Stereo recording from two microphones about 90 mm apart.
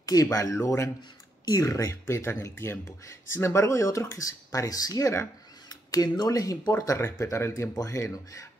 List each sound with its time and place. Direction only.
0.0 s speech: 40° left (ahead or behind)
7.0 s speech: 30° left (ahead or behind)